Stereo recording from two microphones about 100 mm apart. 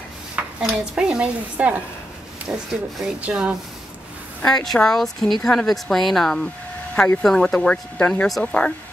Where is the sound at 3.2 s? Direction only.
10° right (ahead or behind).